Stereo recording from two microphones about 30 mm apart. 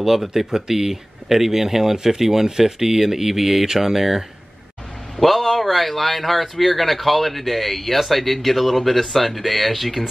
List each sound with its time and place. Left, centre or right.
0.0 s speech: centre
5.2 s speech: centre